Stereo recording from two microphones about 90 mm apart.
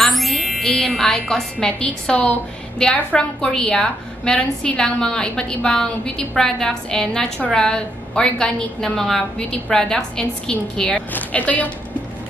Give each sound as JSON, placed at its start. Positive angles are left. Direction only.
{"t": 0.0, "sound": "a woman's voice", "side_deg": 0}